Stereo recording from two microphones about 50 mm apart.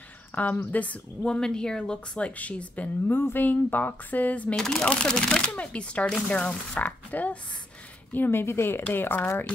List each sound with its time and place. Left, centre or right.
0.3 s speech: left
0.7 s a woman's voice: left
1.3 s a woman's voice: centre
3.1 s a woman's voice: left
4.6 s speech: centre
5.4 s a woman's voice: left
8.1 s a woman's voice: left